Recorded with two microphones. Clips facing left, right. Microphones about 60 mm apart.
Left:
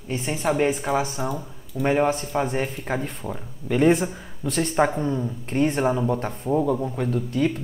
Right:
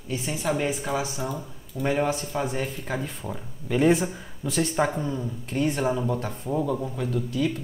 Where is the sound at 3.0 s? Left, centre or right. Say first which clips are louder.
Left 2 dB; centre.